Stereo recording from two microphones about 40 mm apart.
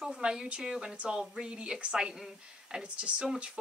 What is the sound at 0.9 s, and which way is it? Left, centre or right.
Speech, right.